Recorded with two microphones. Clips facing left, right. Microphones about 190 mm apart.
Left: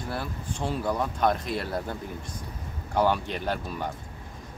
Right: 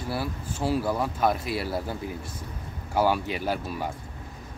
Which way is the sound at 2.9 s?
5° right (ahead or behind).